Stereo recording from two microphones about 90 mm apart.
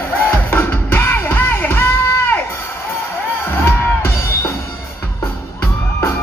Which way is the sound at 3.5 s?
25° left (ahead or behind).